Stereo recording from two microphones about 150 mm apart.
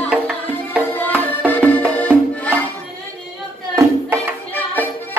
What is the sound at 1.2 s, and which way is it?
Music, 10° left (ahead or behind).